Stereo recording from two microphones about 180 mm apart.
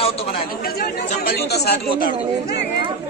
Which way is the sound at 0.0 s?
35° left (ahead or behind).